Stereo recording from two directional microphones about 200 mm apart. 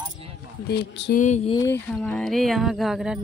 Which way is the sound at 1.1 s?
35° left (ahead or behind).